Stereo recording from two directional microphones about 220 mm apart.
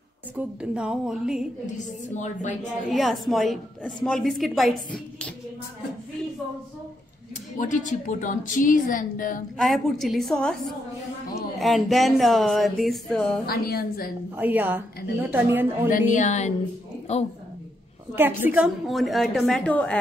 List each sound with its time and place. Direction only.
0.4 s a woman's voice: 5° right (ahead or behind)
2.1 s a woman's voice: 35° left (ahead or behind)
2.9 s a woman's voice: centre (ahead or behind)
7.5 s a woman's voice: 35° left (ahead or behind)
9.6 s a woman's voice: centre (ahead or behind)
11.5 s a woman's voice: centre (ahead or behind)
13.5 s a woman's voice: 45° left (ahead or behind)
14.3 s a woman's voice: 10° right (ahead or behind)
16.1 s a woman's voice: 35° left (ahead or behind)
18.1 s a woman's voice: 10° right (ahead or behind)